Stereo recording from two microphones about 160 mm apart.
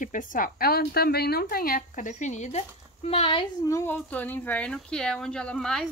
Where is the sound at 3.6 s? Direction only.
15° left (ahead or behind).